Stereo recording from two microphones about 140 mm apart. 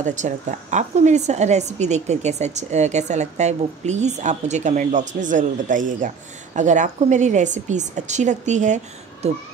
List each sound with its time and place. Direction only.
0.0 s speech: 60° right (ahead or behind)